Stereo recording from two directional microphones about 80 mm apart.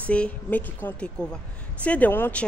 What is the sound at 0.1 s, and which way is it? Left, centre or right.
A man's voice, centre.